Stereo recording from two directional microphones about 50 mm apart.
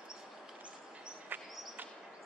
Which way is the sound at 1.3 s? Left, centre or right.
Right.